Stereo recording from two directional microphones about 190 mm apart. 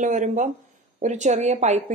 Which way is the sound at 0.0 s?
40° right (ahead or behind).